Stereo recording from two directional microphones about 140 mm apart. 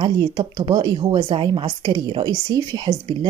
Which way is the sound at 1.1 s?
40° right (ahead or behind).